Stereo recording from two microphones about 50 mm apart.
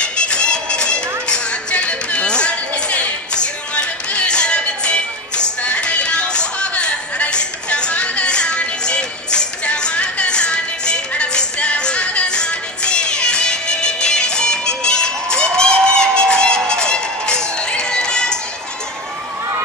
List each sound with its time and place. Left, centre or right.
0.0 s music: centre